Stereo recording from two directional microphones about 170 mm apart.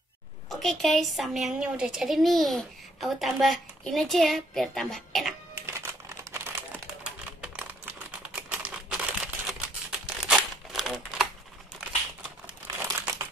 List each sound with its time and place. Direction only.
0.5 s a woman's voice: centre (ahead or behind)
5.7 s typewriter: 15° right (ahead or behind)
8.4 s crumpling: 5° right (ahead or behind)
12.7 s crumpling: 15° right (ahead or behind)